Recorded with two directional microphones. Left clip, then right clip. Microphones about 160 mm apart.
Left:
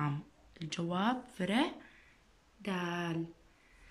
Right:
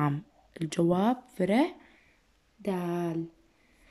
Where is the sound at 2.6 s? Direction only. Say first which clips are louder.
Right 5 dB; 30° right (ahead or behind).